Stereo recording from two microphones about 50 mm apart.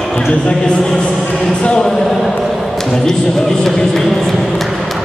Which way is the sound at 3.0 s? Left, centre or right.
Centre.